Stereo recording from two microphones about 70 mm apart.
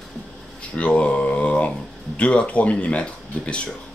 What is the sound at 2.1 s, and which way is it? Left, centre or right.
Speech, centre.